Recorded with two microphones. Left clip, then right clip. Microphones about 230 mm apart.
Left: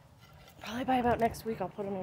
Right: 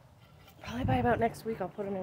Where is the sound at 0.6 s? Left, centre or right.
Left.